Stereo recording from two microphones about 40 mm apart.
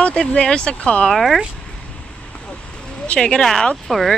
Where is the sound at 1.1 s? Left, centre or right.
Centre.